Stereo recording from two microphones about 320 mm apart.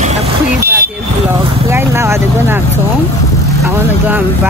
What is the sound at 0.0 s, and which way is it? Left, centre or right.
Vehicle, right.